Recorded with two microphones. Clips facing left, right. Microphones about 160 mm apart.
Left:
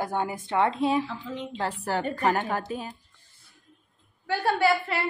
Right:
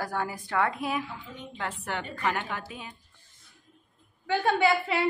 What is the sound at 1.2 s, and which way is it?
Speech, 90° left.